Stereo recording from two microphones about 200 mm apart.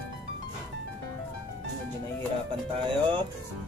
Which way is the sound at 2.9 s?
25° right (ahead or behind).